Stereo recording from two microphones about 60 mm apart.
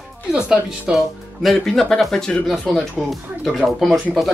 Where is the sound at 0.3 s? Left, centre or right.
Centre.